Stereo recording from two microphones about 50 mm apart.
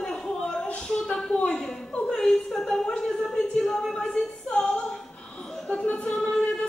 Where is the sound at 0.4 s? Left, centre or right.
Centre.